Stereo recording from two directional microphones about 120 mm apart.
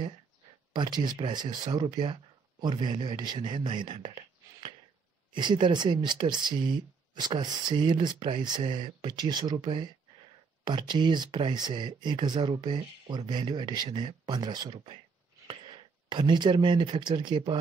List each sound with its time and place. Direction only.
0.7 s speech: 35° right (ahead or behind)